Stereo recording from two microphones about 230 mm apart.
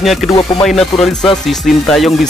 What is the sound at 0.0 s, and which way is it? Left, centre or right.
Speech, centre.